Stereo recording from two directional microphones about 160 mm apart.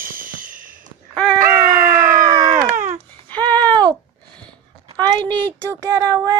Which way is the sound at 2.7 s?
55° right (ahead or behind).